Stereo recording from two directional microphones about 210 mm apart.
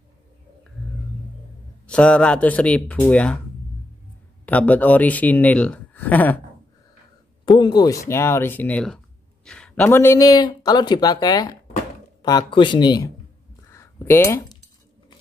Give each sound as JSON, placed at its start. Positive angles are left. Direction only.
{"t": 1.9, "sound": "speech", "side_deg": 5}
{"t": 4.5, "sound": "speech", "side_deg": 5}
{"t": 7.4, "sound": "speech", "side_deg": 20}
{"t": 13.7, "sound": "coin", "side_deg": 10}